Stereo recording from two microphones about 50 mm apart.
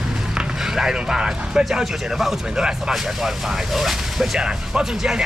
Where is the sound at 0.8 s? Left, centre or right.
Centre.